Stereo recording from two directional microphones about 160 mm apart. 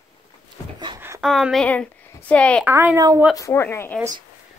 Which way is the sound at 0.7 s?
30° right (ahead or behind).